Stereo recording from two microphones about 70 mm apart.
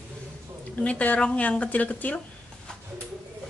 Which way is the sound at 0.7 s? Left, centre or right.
Centre.